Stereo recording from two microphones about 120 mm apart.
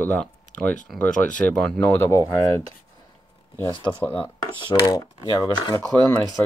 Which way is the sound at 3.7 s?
40° left (ahead or behind).